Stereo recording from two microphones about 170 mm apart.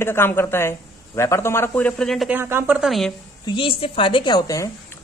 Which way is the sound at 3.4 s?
30° left (ahead or behind).